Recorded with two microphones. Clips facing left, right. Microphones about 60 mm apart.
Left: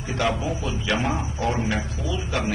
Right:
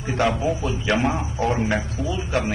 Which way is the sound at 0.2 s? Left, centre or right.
Right.